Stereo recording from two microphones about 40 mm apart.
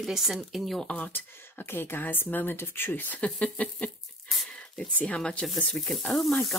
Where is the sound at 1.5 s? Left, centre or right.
Left.